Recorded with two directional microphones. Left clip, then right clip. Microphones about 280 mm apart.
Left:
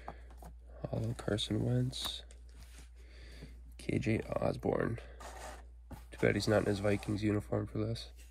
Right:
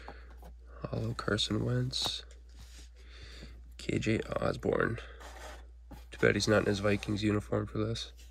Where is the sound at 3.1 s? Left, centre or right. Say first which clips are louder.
Right 5 dB; centre.